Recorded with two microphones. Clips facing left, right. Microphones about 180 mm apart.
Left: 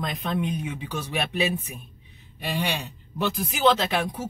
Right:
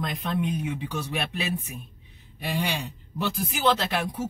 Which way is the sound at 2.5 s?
Centre (ahead or behind).